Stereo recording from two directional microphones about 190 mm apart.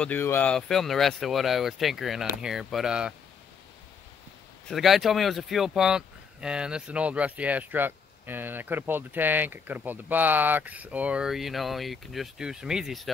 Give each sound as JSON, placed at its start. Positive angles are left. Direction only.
{"t": 0.0, "sound": "speech", "side_deg": 10}
{"t": 4.6, "sound": "speech", "side_deg": 0}